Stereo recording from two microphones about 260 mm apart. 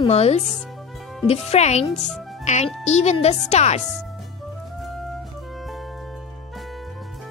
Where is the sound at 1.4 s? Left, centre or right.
Left.